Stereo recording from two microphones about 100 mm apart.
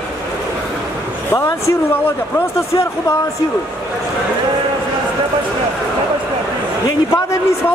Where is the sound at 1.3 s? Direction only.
30° left (ahead or behind).